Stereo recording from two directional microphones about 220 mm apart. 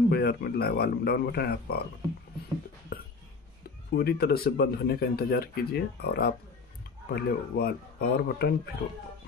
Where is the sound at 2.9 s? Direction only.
40° left (ahead or behind).